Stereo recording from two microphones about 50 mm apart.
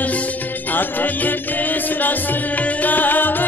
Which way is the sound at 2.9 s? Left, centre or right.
Left.